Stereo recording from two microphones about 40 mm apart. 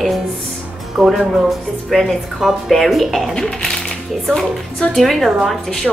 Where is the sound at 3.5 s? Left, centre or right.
Centre.